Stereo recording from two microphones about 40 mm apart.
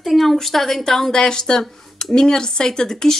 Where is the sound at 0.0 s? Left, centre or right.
Centre.